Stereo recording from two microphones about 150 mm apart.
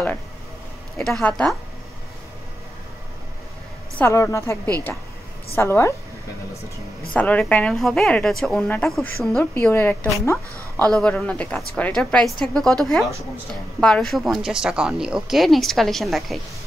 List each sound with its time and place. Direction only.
0.9 s a woman's voice: 5° left (ahead or behind)
4.0 s a woman's voice: 20° left (ahead or behind)
5.6 s speech: 20° left (ahead or behind)
7.2 s a woman's voice: 10° left (ahead or behind)